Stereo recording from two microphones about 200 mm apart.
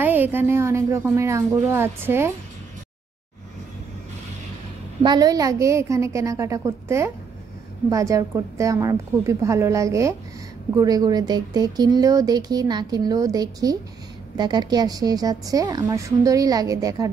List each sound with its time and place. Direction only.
0.0 s a woman's voice: 10° right (ahead or behind)
5.0 s a woman's voice: 20° right (ahead or behind)